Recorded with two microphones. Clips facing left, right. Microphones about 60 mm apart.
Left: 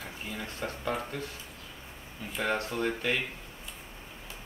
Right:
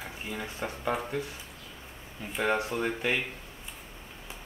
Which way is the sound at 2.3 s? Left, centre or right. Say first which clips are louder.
Right 3 dB; centre.